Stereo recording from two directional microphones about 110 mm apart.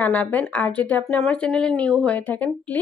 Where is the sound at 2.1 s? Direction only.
15° left (ahead or behind).